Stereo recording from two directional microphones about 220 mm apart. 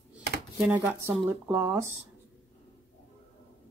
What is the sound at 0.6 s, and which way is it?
Speech, 5° right (ahead or behind).